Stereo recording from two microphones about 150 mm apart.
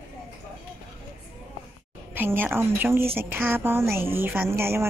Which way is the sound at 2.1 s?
15° right (ahead or behind).